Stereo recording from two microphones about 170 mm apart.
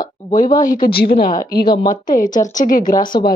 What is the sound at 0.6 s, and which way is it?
Speech, 55° left (ahead or behind).